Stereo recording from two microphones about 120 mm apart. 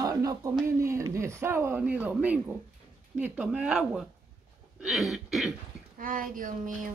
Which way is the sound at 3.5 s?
5° right (ahead or behind).